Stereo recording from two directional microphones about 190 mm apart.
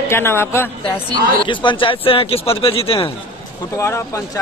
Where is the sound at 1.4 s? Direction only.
25° left (ahead or behind).